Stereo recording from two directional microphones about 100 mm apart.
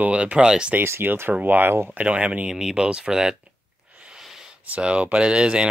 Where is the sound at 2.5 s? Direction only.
5° right (ahead or behind).